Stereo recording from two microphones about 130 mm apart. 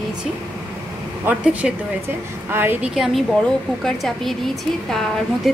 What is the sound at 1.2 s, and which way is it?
A woman's voice, 10° right (ahead or behind).